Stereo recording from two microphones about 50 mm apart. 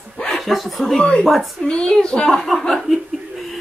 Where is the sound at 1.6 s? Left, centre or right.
Centre.